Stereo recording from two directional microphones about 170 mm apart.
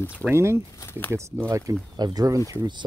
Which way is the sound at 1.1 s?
15° right (ahead or behind).